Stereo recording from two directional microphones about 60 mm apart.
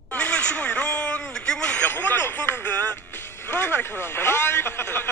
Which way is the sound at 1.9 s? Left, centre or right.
Left.